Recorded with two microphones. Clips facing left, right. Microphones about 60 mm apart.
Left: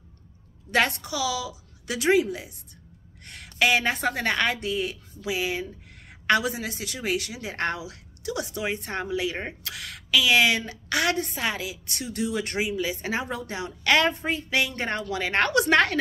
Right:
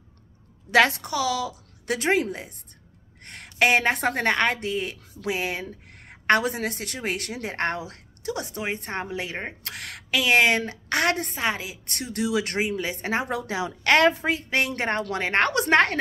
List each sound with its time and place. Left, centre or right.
0.7 s a woman's voice: right
1.0 s a woman's voice: right
3.5 s a woman's voice: right
6.0 s a woman's voice: right
11.3 s a woman's voice: right
11.8 s speech: right
12.5 s a woman's voice: right
13.3 s speech: right
14.0 s a woman's voice: right
15.0 s a woman's voice: right
15.3 s a woman's voice: right